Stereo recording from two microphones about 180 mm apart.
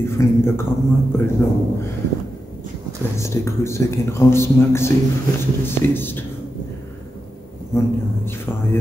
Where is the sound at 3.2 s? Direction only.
15° left (ahead or behind).